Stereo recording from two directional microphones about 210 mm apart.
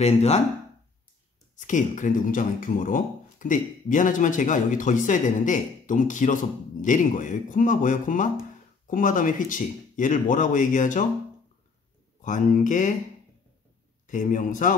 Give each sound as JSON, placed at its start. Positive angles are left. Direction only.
{"t": 0.0, "sound": "speech", "side_deg": 30}
{"t": 1.6, "sound": "speech", "side_deg": 35}
{"t": 12.2, "sound": "speech", "side_deg": 35}
{"t": 14.0, "sound": "speech", "side_deg": 40}